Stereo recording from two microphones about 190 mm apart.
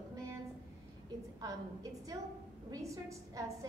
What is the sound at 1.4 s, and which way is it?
A woman's voice, 20° right (ahead or behind).